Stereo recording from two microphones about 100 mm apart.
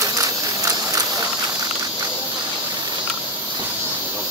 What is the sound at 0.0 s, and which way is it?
Ratchet, 35° right (ahead or behind).